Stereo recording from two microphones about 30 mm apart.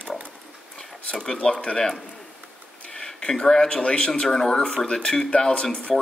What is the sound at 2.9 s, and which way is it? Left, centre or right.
Speech, left.